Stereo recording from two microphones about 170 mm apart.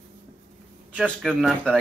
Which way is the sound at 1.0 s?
5° left (ahead or behind).